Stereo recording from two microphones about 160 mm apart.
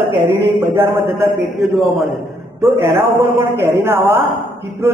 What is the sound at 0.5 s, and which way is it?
Speech, 15° right (ahead or behind).